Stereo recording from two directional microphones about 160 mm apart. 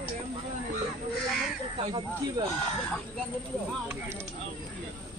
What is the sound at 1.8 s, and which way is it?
Speech, 30° right (ahead or behind).